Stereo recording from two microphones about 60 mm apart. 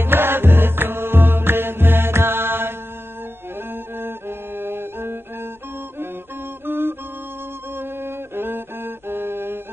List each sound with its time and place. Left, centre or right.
0.0 s music: right
4.0 s music: right
6.6 s music: right
7.7 s a sound: right